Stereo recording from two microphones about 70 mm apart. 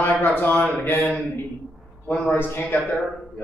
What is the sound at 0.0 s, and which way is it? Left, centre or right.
Speech, left.